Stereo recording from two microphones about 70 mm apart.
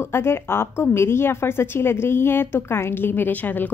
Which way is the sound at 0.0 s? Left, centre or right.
Left.